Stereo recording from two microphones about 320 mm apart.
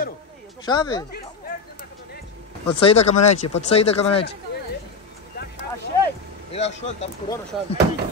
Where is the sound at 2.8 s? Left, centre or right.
Centre.